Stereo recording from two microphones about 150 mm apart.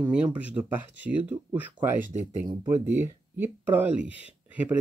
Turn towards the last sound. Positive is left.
turn(degrees=-10)  # may be behind; listen again after turning